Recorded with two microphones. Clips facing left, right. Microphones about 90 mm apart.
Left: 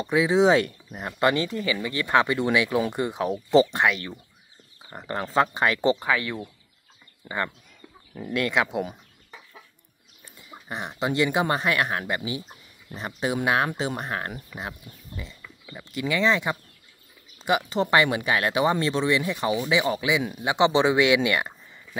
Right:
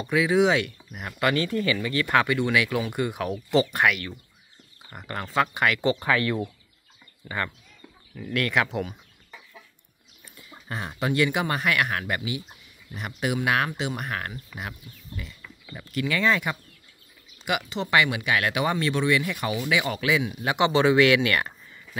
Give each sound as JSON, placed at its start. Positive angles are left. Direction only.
{"t": 0.0, "sound": "speech", "side_deg": 25}
{"t": 5.9, "sound": "speech", "side_deg": 15}
{"t": 10.5, "sound": "speech", "side_deg": 20}
{"t": 17.5, "sound": "speech", "side_deg": 35}